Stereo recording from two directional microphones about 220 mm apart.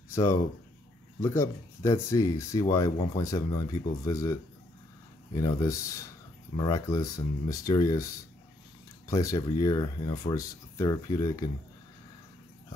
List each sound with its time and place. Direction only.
0.1 s speech: 15° left (ahead or behind)